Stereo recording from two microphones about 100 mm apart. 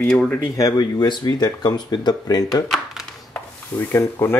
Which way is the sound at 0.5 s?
40° left (ahead or behind).